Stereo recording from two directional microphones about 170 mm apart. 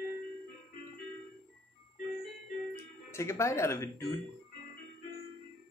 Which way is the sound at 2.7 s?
15° left (ahead or behind).